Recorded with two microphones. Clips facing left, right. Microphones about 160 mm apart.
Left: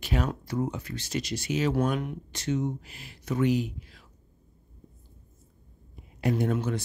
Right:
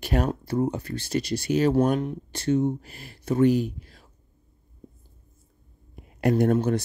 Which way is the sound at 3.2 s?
35° right (ahead or behind).